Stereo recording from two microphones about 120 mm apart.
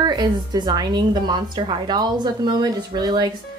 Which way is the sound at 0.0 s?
35° right (ahead or behind).